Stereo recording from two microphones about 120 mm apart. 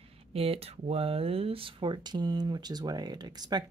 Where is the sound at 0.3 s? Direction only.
55° right (ahead or behind).